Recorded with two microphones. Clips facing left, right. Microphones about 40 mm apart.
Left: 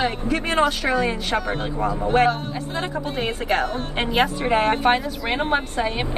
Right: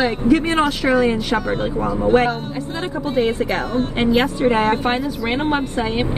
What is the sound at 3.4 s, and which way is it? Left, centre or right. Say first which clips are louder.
A woman's voice: right 2 dB; centre.